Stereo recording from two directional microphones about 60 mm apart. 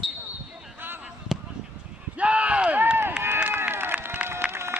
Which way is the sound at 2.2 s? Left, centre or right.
Right.